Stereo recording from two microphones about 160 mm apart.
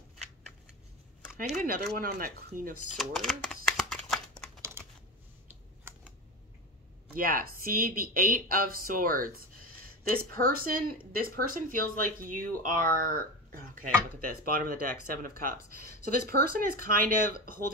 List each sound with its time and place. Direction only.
1.5 s speech: 50° right (ahead or behind)
2.0 s speech: 65° right (ahead or behind)
3.0 s a sound: centre (ahead or behind)
4.6 s computer keyboard: 15° right (ahead or behind)
5.9 s typing: 15° right (ahead or behind)
7.2 s speech: 65° right (ahead or behind)